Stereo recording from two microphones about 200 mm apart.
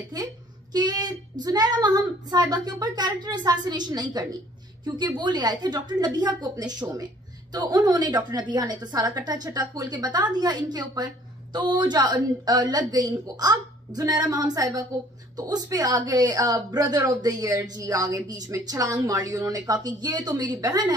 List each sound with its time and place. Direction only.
0.7 s speech: 20° right (ahead or behind)